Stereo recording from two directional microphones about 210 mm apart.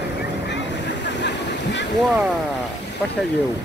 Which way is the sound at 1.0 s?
55° left (ahead or behind).